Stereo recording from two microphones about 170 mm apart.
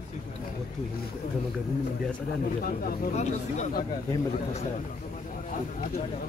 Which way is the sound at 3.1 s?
40° left (ahead or behind).